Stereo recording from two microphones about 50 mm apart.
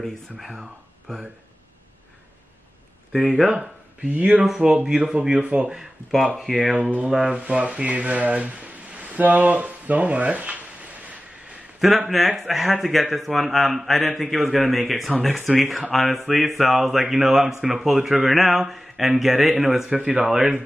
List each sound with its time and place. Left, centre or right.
3.1 s speech: centre
4.1 s speech: right
4.5 s speech: centre
6.5 s a man's voice: centre
6.8 s a sound: right
7.2 s speech: right
11.8 s a man's voice: centre